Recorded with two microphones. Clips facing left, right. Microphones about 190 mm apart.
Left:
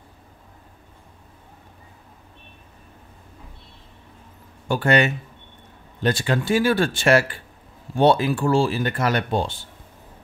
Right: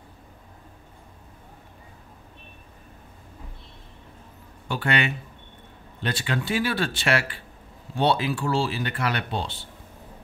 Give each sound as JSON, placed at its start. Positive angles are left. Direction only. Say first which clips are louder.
{"t": 4.6, "sound": "speech", "louder": "left 7 dB", "side_deg": 45}